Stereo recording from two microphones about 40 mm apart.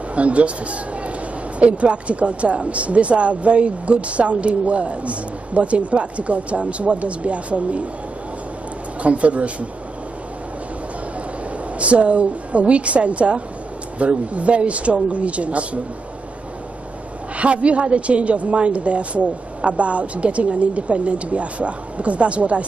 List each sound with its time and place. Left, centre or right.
0.1 s speech: right
9.0 s speech: right
11.8 s speech: right
17.4 s speech: right